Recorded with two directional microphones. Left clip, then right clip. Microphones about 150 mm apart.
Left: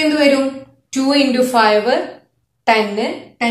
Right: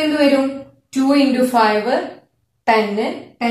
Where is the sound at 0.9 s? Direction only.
20° left (ahead or behind).